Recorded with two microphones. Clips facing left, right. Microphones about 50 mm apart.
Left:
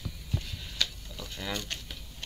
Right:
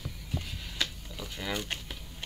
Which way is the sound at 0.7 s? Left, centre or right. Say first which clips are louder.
Even; centre.